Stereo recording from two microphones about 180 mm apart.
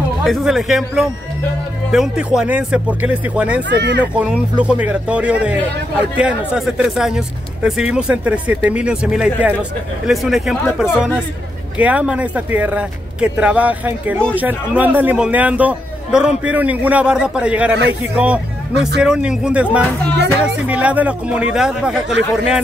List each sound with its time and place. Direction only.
0.2 s a man's voice: centre (ahead or behind)
3.6 s speech: 70° right (ahead or behind)
4.0 s a man's voice: 5° right (ahead or behind)